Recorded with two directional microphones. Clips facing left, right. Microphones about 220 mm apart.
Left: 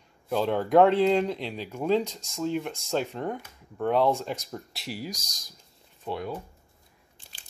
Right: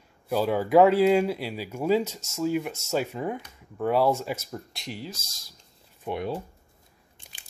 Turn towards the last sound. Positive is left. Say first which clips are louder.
# right 3 dB
turn(degrees=-25)  # may be behind; listen again after turning